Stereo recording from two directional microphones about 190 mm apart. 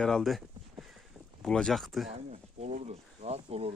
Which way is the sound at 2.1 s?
35° right (ahead or behind).